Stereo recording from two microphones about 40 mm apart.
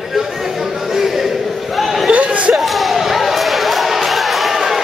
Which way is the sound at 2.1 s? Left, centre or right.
Right.